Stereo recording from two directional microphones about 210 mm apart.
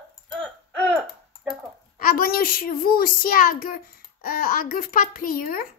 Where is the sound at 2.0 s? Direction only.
40° left (ahead or behind).